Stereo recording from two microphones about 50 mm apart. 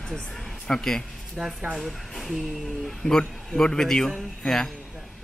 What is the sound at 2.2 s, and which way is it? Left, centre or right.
A man's voice, centre.